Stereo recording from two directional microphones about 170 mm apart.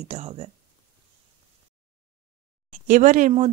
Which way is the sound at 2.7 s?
50° right (ahead or behind).